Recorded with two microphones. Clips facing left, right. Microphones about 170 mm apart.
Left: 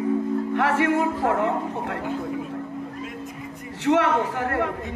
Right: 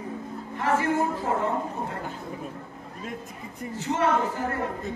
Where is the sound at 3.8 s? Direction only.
80° left.